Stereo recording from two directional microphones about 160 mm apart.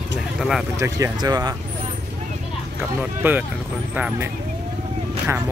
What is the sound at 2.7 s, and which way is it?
Speech, 10° right (ahead or behind).